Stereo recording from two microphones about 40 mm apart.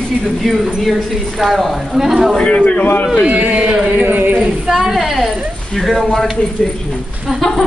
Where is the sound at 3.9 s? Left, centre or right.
Right.